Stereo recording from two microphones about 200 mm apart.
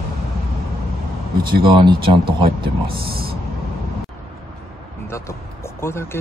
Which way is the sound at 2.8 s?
50° right (ahead or behind).